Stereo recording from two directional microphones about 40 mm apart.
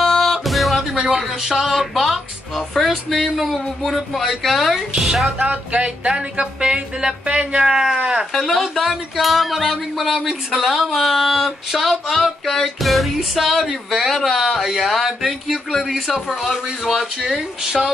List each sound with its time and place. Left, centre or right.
0.0 s music: centre
0.9 s speech: centre
2.8 s music: centre
4.9 s speech: centre
5.4 s music: right; by 8.0 s centre
8.3 s music: centre
15.0 s speech: centre
15.9 s music: centre
17.0 s speech: centre